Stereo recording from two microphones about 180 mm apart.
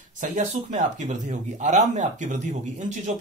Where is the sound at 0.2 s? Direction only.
45° right (ahead or behind).